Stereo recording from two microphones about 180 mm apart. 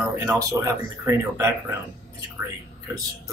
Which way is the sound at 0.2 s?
20° right (ahead or behind).